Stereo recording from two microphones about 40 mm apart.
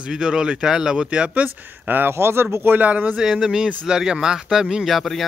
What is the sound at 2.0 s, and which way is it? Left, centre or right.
Speech, right.